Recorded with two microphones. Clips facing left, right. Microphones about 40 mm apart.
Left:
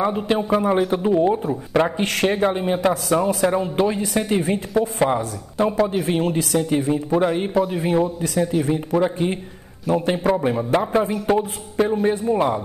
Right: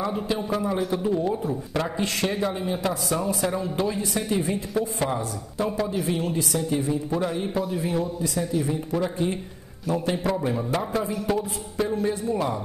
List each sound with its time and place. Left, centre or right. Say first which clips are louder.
0.0 s a man's voice: left 6 dB; left
2.0 s a man's voice: left 6 dB; left
6.0 s a man's voice: left 5 dB; left